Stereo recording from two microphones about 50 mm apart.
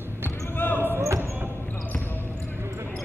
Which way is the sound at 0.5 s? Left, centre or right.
Left.